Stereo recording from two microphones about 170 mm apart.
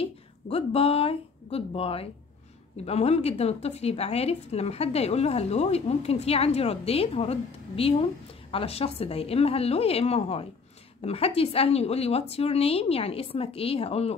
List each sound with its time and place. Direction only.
0.0 s a woman's voice: 35° left (ahead or behind)